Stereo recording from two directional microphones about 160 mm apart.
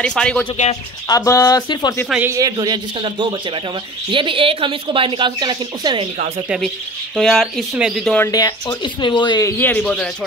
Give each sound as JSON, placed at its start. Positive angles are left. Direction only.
{"t": 0.0, "sound": "speech", "side_deg": 5}
{"t": 1.0, "sound": "speech", "side_deg": 20}
{"t": 2.0, "sound": "speech", "side_deg": -10}
{"t": 2.3, "sound": "a man's voice", "side_deg": -20}
{"t": 7.2, "sound": "speech", "side_deg": 5}
{"t": 8.3, "sound": "speech", "side_deg": 25}
{"t": 9.6, "sound": "a man's voice", "side_deg": 10}